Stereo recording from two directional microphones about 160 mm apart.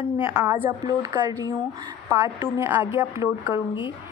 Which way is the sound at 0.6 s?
25° right (ahead or behind).